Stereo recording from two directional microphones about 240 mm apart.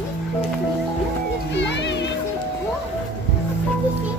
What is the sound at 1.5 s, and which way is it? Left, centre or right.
Music, left.